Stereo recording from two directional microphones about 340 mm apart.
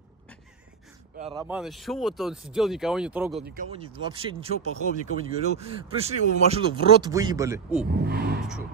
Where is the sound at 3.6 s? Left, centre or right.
Centre.